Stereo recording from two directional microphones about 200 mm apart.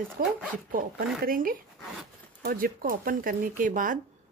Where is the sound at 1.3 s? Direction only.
45° right (ahead or behind).